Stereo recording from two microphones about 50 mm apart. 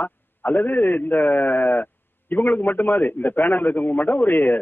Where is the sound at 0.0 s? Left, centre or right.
Left.